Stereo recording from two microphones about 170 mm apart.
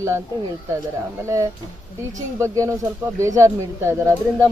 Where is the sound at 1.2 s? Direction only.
15° right (ahead or behind).